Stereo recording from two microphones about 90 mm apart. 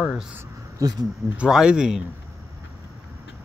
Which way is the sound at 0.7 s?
45° right (ahead or behind).